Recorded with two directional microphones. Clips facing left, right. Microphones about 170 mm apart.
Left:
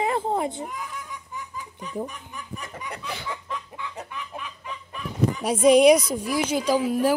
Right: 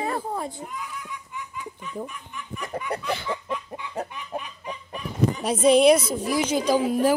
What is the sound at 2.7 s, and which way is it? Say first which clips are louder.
Chicken: right 9 dB; 40° right (ahead or behind).